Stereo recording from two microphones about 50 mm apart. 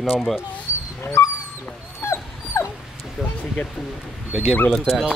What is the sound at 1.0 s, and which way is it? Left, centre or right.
Dog, left.